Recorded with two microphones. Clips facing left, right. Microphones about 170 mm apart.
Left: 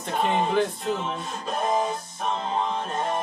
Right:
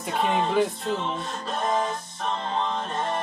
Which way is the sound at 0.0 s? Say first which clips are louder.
Even; centre (ahead or behind).